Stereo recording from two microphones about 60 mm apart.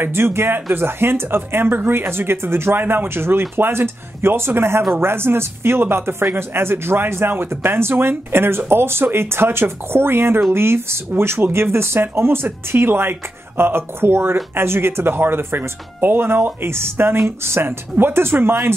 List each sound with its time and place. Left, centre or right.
0.0 s speech: right